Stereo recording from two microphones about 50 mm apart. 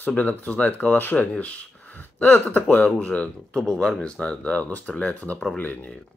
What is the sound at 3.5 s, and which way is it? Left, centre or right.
Speech, centre.